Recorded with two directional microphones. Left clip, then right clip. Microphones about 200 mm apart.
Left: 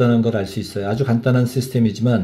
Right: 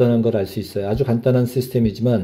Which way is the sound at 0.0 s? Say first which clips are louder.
Right 1 dB; 20° right (ahead or behind).